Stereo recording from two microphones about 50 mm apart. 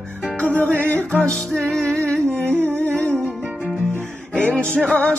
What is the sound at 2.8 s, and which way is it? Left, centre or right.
Music, left.